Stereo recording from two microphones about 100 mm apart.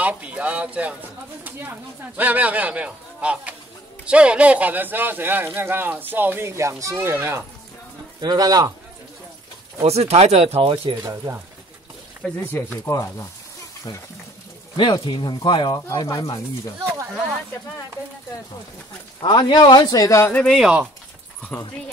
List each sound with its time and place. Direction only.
0.0 s a sound: 15° right (ahead or behind)
1.4 s speech: 20° right (ahead or behind)
8.2 s speech: 40° right (ahead or behind)
9.8 s speech: 90° right; by 11.0 s 60° right (ahead or behind)
11.0 s speech: 25° right (ahead or behind)
12.8 s speech: 25° left (ahead or behind)
13.9 s speech: 45° left (ahead or behind)
16.8 s speech: 25° right (ahead or behind)
19.2 s speech: 45° left (ahead or behind); by 20.3 s 30° left (ahead or behind)
20.5 s speech: 10° right (ahead or behind)
21.5 s speech: 15° left (ahead or behind)